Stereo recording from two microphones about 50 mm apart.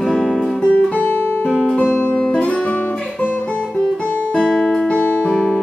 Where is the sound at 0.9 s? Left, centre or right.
Left.